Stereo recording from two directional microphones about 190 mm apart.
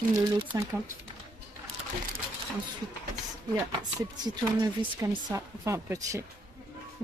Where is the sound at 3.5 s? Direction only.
20° right (ahead or behind).